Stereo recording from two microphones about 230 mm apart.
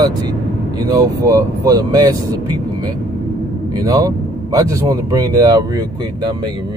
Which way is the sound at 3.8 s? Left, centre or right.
Centre.